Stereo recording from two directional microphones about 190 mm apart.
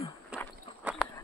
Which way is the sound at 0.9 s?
5° right (ahead or behind).